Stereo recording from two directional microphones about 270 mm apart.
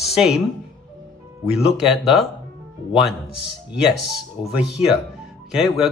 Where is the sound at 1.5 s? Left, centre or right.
Centre.